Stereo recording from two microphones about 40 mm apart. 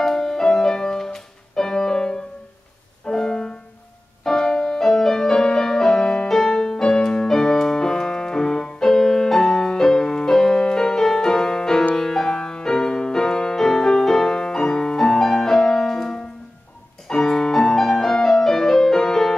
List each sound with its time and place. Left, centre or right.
0.0 s music: centre